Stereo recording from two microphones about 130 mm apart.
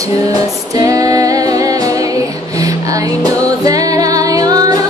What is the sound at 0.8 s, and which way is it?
Music, 25° right (ahead or behind).